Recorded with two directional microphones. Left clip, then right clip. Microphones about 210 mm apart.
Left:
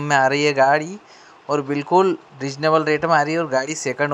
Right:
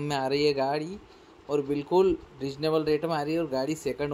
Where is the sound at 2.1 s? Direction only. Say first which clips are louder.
Left 5 dB; 35° left (ahead or behind).